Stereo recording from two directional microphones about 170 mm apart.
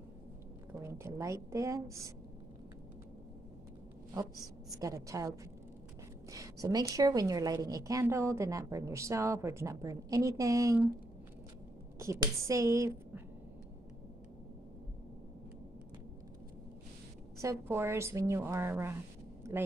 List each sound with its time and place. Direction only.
0.7 s a woman's voice: 15° right (ahead or behind)
4.1 s a woman's voice: 20° right (ahead or behind)
12.0 s a woman's voice: 15° right (ahead or behind)
17.4 s a woman's voice: 15° right (ahead or behind)
19.4 s a sound: 15° right (ahead or behind)